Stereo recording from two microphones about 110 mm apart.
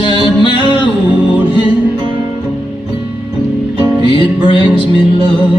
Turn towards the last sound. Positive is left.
turn(degrees=50)  # may be behind; listen again after turning